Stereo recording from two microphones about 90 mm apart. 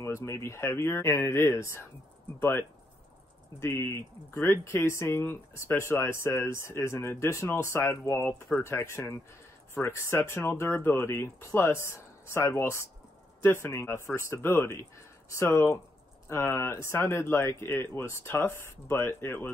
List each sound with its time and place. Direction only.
0.0 s speech: 30° left (ahead or behind)
3.5 s speech: 30° left (ahead or behind)